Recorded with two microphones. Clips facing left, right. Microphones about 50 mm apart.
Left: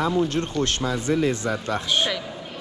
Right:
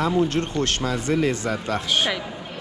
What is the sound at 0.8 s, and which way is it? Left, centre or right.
Speech, right.